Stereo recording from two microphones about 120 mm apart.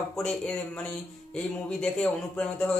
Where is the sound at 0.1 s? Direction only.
5° left (ahead or behind).